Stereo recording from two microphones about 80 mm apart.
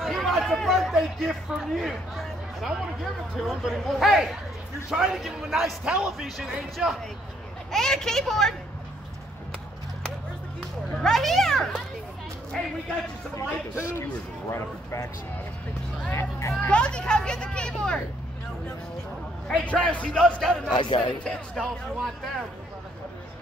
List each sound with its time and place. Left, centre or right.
0.0 s a man's voice: centre
7.7 s a man's voice: centre
11.0 s a child's voice: centre
13.4 s a man's voice: left
16.1 s a man's voice: left
16.7 s speech: centre
19.4 s speech: centre
20.7 s speech: left
21.5 s a man's voice: centre